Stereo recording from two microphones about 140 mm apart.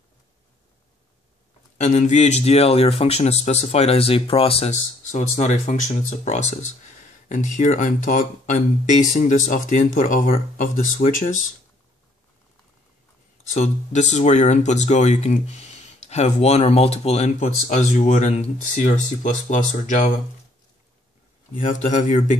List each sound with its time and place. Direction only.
1.8 s speech: 55° left (ahead or behind)
5.1 s speech: 60° left (ahead or behind)
13.5 s speech: 55° left (ahead or behind)
21.5 s speech: 65° left (ahead or behind)